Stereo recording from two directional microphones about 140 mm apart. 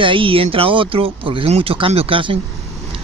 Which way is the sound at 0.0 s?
40° right (ahead or behind).